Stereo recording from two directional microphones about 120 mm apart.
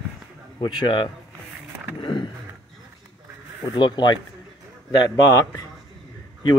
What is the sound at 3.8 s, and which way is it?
Speech, 40° left (ahead or behind).